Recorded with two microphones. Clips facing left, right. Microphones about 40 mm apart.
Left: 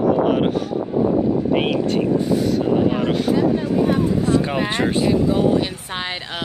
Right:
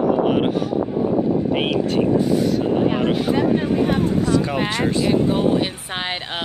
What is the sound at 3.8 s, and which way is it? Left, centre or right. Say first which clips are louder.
Speech: left 1 dB; right.